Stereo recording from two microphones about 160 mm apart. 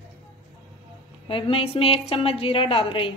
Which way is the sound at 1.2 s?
35° left (ahead or behind).